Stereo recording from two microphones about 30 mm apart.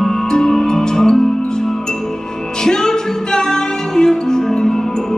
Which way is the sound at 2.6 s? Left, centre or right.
Left.